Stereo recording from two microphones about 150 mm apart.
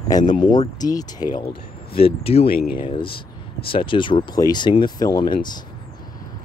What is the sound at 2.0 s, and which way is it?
Speech, 40° left (ahead or behind).